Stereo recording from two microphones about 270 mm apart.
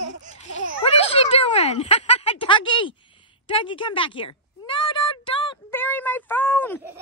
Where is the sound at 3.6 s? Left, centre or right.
Centre.